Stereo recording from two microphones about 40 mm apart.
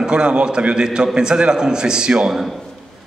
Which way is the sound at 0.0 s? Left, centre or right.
Right.